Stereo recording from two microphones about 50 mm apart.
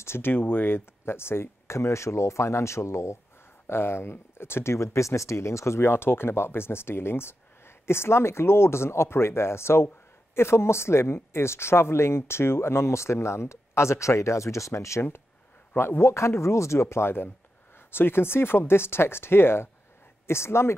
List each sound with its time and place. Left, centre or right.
0.0 s speech: left
3.6 s speech: left
15.7 s speech: left